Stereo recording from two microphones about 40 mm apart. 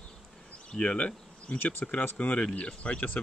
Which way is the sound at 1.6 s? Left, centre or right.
Left.